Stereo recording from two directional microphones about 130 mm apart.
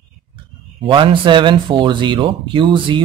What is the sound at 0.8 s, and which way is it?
A man's voice, 40° right (ahead or behind).